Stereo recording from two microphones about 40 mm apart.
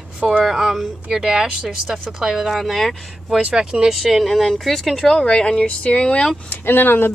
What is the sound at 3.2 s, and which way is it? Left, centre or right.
Speech, centre.